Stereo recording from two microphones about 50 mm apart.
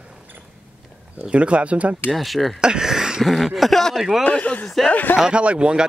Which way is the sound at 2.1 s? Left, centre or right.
Centre.